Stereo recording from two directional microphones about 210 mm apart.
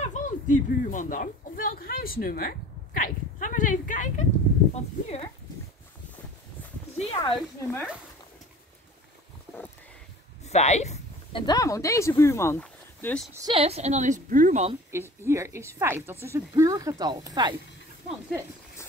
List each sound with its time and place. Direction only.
0.0 s speech: 35° left (ahead or behind)
7.2 s speech: 15° left (ahead or behind)
10.4 s a sound: 30° left (ahead or behind)
11.4 s speech: 15° left (ahead or behind)
13.3 s speech: 20° right (ahead or behind)
14.9 s speech: 10° right (ahead or behind)